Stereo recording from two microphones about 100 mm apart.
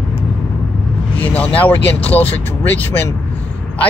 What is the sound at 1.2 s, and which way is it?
Speech, 15° left (ahead or behind).